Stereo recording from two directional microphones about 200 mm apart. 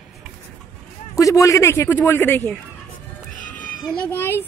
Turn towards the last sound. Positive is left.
turn(degrees=10)  # may be behind; listen again after turning